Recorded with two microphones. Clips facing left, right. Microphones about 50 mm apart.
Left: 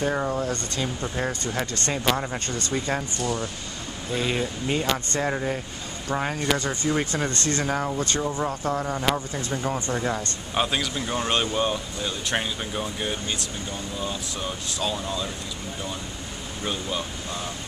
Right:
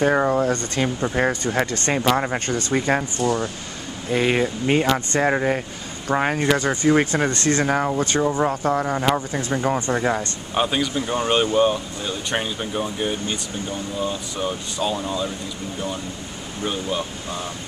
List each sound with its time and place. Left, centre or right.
0.0 s speech: right
10.5 s speech: centre